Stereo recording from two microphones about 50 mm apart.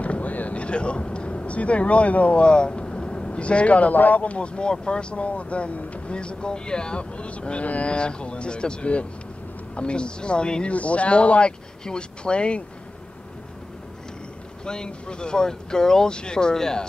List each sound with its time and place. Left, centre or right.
0.0 s speech: left
14.6 s speech: centre